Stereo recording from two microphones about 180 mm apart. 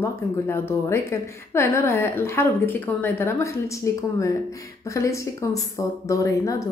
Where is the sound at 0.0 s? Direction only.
15° left (ahead or behind).